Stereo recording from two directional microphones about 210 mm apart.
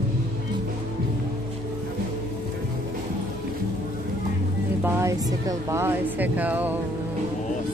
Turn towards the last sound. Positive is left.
turn(degrees=-10)  # may be behind; listen again after turning